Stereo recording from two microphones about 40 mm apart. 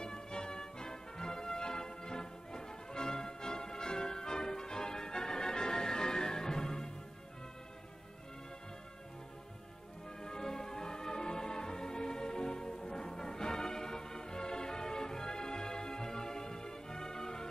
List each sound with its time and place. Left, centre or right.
0.0 s music: centre
10.2 s music: centre